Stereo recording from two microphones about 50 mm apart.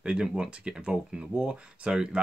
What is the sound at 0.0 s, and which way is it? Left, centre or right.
Speech, centre.